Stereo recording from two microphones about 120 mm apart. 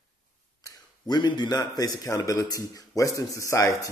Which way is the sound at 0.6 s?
35° left (ahead or behind).